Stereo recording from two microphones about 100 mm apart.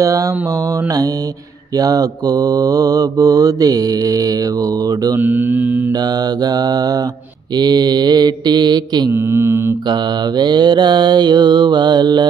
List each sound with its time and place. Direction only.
0.0 s mantra: 35° right (ahead or behind)
5.2 s mantra: 15° right (ahead or behind)
5.9 s mantra: 40° right (ahead or behind)
9.1 s mantra: 25° right (ahead or behind)
9.8 s mantra: 45° right (ahead or behind)